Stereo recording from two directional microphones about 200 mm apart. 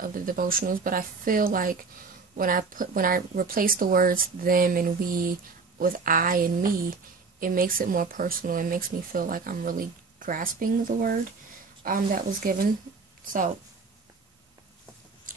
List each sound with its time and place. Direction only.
0.0 s speech: 45° right (ahead or behind)